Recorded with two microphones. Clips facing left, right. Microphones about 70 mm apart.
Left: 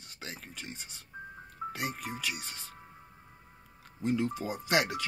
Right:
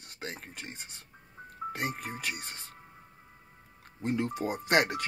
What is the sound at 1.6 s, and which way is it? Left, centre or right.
Music, centre.